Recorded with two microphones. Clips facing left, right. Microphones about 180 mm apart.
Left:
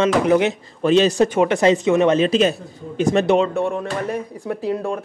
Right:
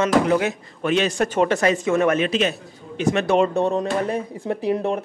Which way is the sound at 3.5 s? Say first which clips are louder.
Right 2 dB; 20° right (ahead or behind).